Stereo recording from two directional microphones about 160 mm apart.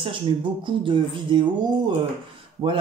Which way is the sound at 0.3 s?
30° right (ahead or behind).